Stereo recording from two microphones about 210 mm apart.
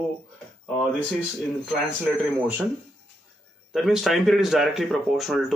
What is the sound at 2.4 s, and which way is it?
Speech, 10° right (ahead or behind).